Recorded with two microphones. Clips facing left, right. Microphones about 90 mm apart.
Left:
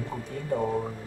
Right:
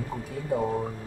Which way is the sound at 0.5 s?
5° right (ahead or behind).